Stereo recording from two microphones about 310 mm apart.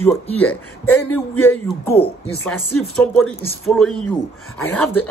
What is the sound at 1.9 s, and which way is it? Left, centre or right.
Speech, centre.